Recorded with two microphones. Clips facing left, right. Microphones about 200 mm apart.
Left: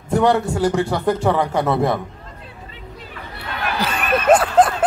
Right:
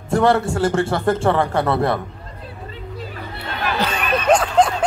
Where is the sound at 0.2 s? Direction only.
15° left (ahead or behind).